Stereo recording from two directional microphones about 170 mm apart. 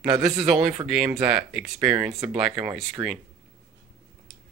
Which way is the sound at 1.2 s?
5° right (ahead or behind).